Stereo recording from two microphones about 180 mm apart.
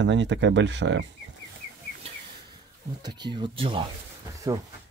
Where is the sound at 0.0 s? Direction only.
85° right.